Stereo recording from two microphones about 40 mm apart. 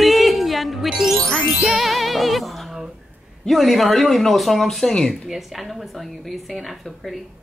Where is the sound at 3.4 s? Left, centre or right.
Centre.